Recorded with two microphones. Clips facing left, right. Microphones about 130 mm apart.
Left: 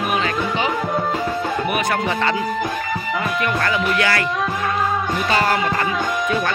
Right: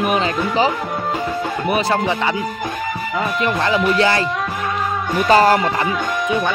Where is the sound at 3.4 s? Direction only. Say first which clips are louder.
Right 5 dB; 25° right (ahead or behind).